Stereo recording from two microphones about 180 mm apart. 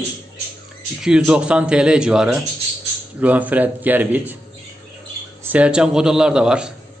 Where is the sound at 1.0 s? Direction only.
5° right (ahead or behind).